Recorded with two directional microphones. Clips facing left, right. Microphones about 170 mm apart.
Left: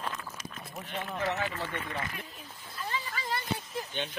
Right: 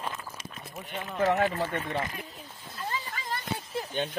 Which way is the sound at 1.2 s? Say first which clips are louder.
Right 9 dB; 45° right (ahead or behind).